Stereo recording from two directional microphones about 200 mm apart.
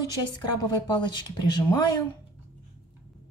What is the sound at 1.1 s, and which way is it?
Speech, 25° left (ahead or behind).